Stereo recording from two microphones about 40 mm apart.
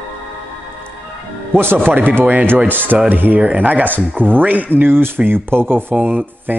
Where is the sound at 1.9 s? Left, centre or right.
Right.